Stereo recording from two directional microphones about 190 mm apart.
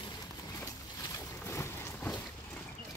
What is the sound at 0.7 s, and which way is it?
Boat, 15° left (ahead or behind).